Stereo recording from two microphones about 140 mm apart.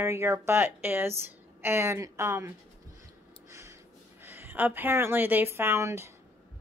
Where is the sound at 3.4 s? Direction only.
20° right (ahead or behind).